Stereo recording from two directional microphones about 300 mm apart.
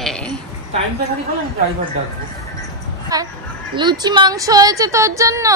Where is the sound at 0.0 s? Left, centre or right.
Centre.